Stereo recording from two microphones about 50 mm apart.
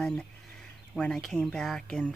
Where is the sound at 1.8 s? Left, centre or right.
Centre.